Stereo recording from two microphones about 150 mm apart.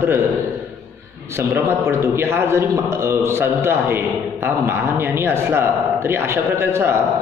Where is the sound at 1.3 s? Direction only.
15° right (ahead or behind).